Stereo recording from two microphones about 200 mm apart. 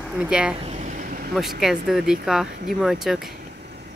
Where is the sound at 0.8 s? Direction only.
35° right (ahead or behind).